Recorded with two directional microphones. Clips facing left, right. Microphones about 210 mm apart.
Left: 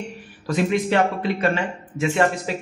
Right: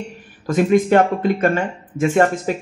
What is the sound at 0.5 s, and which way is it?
Speech, 50° right (ahead or behind).